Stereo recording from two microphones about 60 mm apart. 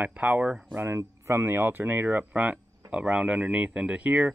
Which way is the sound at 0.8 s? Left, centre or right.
Right.